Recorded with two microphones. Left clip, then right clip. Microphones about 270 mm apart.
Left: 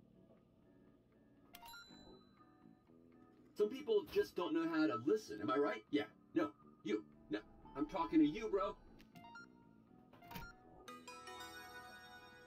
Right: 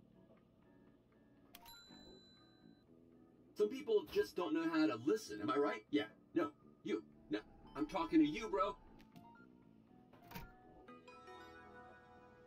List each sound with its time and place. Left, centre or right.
1.5 s a sound: centre
3.5 s speech: centre
7.3 s speech: centre
10.2 s music: centre
10.9 s music: left